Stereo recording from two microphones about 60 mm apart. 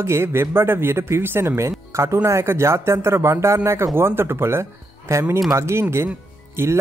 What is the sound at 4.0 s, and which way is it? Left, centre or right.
Speech, right.